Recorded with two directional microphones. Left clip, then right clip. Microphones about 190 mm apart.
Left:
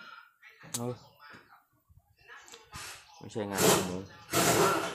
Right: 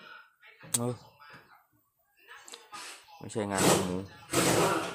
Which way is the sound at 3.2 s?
20° right (ahead or behind).